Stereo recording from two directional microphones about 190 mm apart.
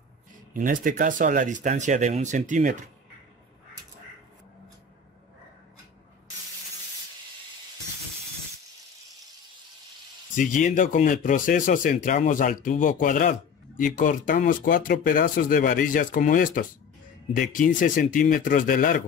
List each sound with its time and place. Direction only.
0.5 s speech: 45° right (ahead or behind)
10.3 s speech: 40° left (ahead or behind)